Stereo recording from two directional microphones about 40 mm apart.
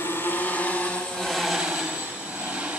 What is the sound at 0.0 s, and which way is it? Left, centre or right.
Vehicle, left.